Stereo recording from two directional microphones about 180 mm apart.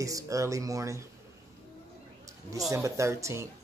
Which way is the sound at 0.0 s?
20° right (ahead or behind).